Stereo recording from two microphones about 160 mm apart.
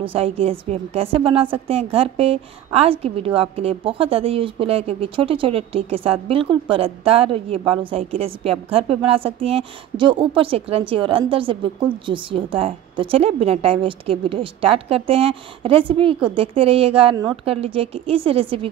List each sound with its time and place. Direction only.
0.0 s a woman's voice: 35° right (ahead or behind)